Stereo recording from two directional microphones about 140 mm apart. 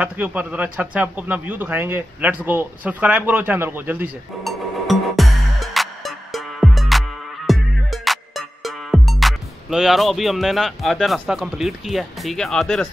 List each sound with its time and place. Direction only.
0.0 s speech: 10° right (ahead or behind)
4.4 s music: centre (ahead or behind)